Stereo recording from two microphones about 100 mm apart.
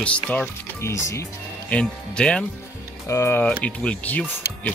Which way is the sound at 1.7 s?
10° left (ahead or behind).